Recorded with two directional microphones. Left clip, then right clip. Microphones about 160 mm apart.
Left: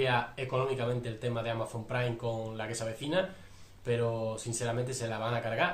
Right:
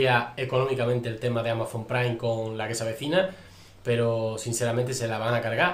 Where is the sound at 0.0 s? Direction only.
10° right (ahead or behind).